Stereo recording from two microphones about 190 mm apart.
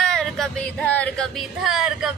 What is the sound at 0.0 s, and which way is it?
Music, centre (ahead or behind).